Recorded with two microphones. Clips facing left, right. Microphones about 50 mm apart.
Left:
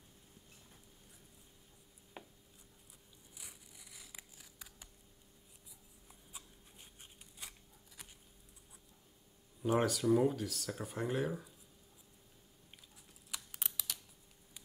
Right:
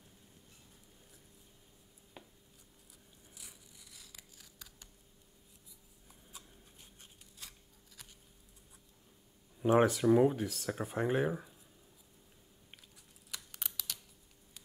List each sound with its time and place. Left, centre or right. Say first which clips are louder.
3.3 s scissors: left 1 dB; centre
7.0 s a sound: left 2 dB; centre
9.6 s speech: right 5 dB; right
13.3 s computer keyboard: even; centre